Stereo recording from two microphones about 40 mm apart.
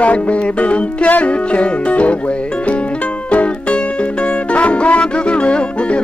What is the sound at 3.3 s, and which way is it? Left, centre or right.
Music, left.